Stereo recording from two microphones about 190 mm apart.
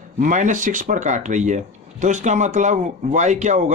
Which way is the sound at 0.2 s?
40° right (ahead or behind).